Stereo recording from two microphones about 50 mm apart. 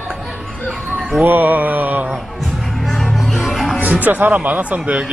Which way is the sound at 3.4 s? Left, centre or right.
Centre.